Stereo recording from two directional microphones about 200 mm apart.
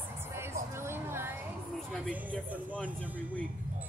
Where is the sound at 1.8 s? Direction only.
Centre (ahead or behind).